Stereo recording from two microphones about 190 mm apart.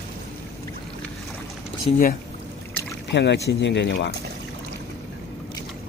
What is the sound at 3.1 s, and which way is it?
Speech, 65° left (ahead or behind).